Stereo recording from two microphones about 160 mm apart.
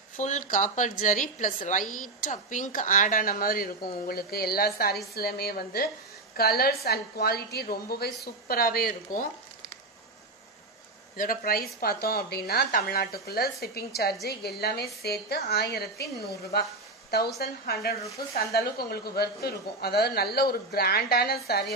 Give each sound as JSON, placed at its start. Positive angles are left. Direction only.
{"t": 0.2, "sound": "a woman's voice", "side_deg": 50}
{"t": 11.1, "sound": "speech", "side_deg": 65}
{"t": 18.5, "sound": "speech", "side_deg": 80}